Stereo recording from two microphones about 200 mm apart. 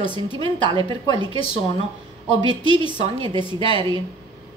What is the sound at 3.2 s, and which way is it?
Speech, 25° right (ahead or behind).